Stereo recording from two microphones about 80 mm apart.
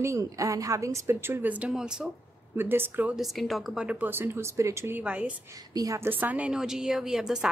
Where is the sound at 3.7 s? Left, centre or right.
Centre; by 5.0 s right.